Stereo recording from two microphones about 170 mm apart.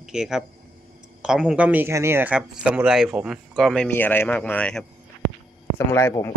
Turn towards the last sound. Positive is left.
turn(degrees=15)  # may be behind; listen again after turning